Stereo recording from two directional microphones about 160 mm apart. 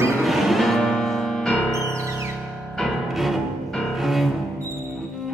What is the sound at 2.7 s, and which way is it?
Music, centre (ahead or behind).